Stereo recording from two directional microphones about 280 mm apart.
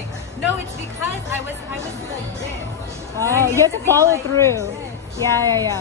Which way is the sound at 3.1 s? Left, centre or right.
Centre.